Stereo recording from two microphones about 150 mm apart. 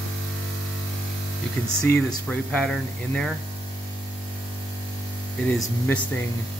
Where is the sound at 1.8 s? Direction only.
10° left (ahead or behind).